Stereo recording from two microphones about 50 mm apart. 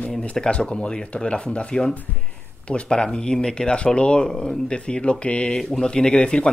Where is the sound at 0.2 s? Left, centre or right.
Left.